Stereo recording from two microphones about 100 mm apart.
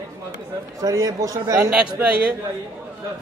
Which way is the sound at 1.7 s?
10° right (ahead or behind).